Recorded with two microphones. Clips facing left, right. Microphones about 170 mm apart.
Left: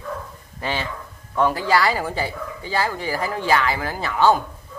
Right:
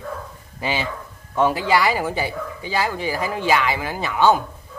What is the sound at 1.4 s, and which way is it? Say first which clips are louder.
Speech: right 1 dB; 20° right (ahead or behind).